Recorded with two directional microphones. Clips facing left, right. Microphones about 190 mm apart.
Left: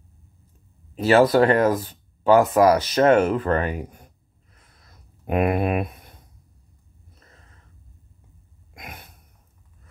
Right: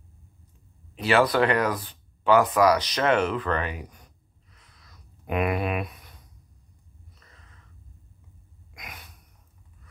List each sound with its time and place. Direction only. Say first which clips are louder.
0.9 s speech: left 5 dB; 40° left (ahead or behind)
7.2 s gasp: left 4 dB; 40° left (ahead or behind)
8.7 s a sound: left 4 dB; 50° left (ahead or behind)